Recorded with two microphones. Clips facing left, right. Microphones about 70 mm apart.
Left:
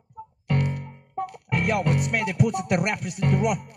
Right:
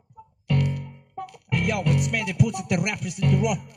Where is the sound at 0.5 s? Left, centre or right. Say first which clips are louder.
Right 1 dB; left.